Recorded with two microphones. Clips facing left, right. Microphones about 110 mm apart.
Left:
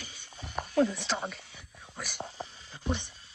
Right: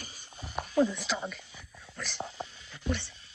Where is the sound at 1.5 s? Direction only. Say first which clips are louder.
Even; 20° left (ahead or behind).